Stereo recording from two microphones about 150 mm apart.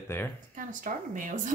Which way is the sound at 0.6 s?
65° right (ahead or behind).